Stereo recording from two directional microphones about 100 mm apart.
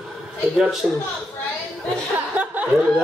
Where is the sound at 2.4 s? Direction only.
10° right (ahead or behind).